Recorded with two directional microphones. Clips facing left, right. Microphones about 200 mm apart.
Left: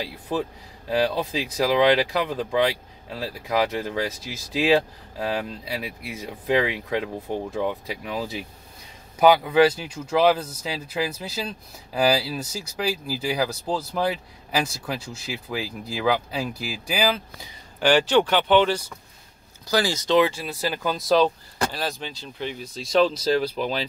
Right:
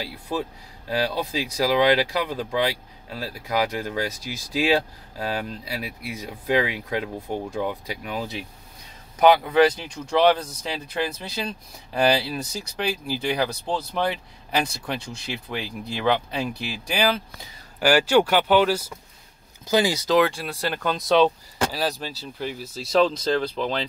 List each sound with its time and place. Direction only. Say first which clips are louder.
0.0 s speech: left 1 dB; centre (ahead or behind)
17.7 s speech: even; 10° right (ahead or behind)
19.7 s speech: right 2 dB; 20° right (ahead or behind)
20.1 s speech: even; centre (ahead or behind)